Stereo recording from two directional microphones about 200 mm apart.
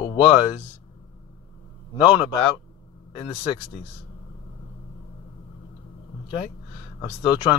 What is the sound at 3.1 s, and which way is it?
Speech, 25° left (ahead or behind).